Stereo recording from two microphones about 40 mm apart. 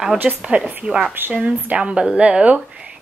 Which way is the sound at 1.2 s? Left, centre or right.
Right.